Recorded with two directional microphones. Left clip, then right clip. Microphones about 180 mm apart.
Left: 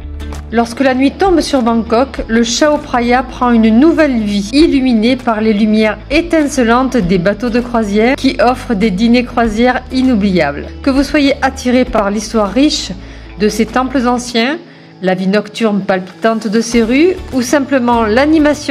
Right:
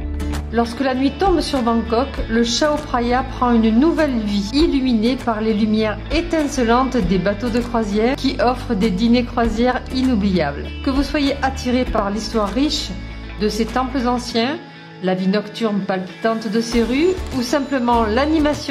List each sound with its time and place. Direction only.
0.5 s a woman's voice: 20° left (ahead or behind)